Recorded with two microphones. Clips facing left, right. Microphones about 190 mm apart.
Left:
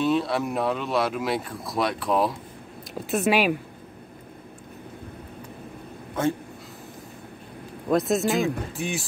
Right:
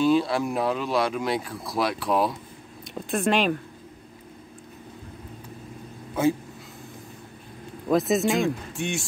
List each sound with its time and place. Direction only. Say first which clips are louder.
0.0 s speech: right 2 dB; centre (ahead or behind)
6.2 s speech: right 2 dB; 5° right (ahead or behind)
7.9 s speech: even; centre (ahead or behind)